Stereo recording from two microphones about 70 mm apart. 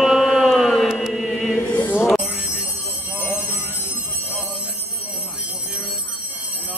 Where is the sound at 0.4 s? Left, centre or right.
Centre.